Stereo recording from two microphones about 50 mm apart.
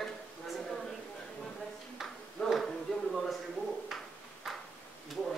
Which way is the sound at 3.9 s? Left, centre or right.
Centre.